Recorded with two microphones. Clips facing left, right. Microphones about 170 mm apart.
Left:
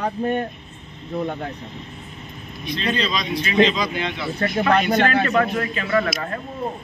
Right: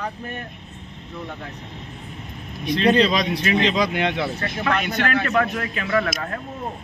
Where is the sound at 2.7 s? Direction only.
60° right (ahead or behind).